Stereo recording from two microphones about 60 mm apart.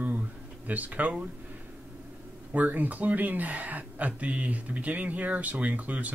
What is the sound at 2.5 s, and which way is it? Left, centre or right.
Speech, right.